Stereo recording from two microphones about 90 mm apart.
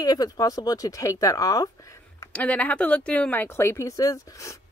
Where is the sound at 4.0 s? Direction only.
40° left (ahead or behind).